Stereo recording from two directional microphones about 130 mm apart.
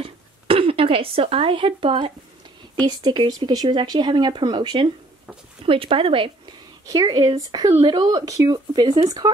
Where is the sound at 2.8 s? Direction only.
30° right (ahead or behind).